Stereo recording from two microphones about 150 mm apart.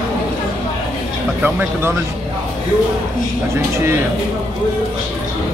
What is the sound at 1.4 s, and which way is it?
Speech, 15° right (ahead or behind).